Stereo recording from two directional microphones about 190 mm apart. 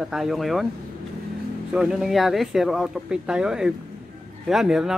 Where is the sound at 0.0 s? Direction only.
Centre (ahead or behind).